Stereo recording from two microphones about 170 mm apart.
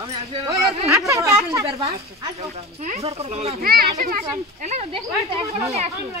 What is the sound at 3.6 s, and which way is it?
Speech, 60° right (ahead or behind).